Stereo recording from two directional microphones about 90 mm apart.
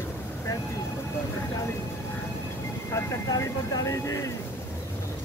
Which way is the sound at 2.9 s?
40° left (ahead or behind).